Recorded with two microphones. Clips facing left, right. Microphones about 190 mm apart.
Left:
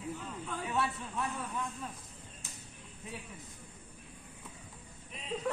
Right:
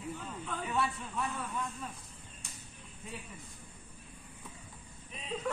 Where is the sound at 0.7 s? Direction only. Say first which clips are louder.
Even; 5° left (ahead or behind).